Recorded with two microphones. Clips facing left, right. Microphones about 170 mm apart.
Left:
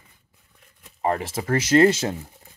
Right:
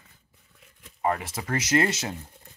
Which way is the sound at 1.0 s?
35° left (ahead or behind).